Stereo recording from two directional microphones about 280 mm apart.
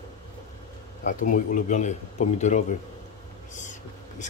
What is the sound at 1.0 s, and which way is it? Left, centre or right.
A man's voice, left.